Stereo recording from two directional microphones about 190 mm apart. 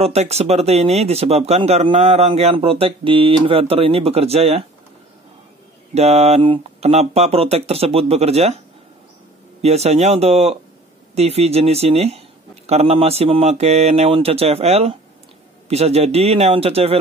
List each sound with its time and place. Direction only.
0.0 s speech: 35° right (ahead or behind)
5.9 s speech: 35° right (ahead or behind)
9.6 s speech: 35° right (ahead or behind)